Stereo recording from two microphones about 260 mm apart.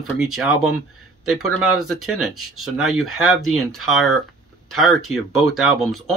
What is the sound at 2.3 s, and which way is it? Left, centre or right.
Speech, right.